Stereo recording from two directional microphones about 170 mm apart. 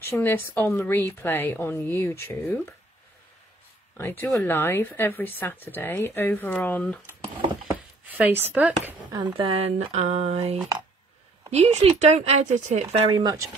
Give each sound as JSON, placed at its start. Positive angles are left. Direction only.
{"t": 0.0, "sound": "speech", "side_deg": 10}
{"t": 3.9, "sound": "speech", "side_deg": 15}
{"t": 8.1, "sound": "a sound", "side_deg": -10}
{"t": 8.5, "sound": "speech", "side_deg": -5}
{"t": 9.2, "sound": "speech", "side_deg": -35}
{"t": 13.1, "sound": "speech", "side_deg": -25}